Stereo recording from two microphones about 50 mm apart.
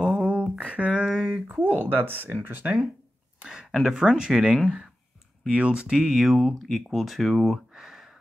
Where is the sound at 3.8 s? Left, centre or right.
Centre.